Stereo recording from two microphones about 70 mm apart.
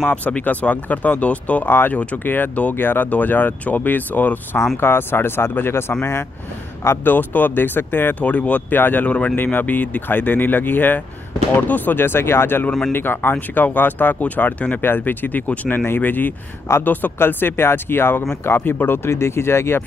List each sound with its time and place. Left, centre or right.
0.1 s speech: left
1.7 s speech: left
7.1 s speech: left